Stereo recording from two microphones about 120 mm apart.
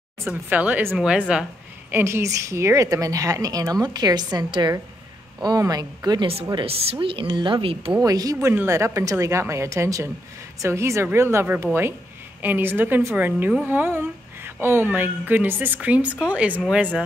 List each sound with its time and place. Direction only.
0.3 s speech: 10° right (ahead or behind)
1.9 s a woman's voice: 20° right (ahead or behind)
6.5 s speech: 50° right (ahead or behind)
8.0 s a woman's voice: 30° right (ahead or behind); by 16.6 s 10° right (ahead or behind)